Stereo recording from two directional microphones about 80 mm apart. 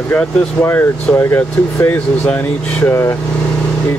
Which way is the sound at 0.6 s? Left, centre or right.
Left.